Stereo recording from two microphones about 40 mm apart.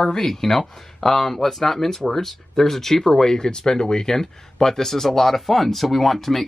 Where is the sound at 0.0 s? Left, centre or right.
Centre.